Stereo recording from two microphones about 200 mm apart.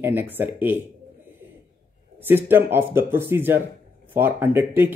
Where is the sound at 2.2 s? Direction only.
10° right (ahead or behind).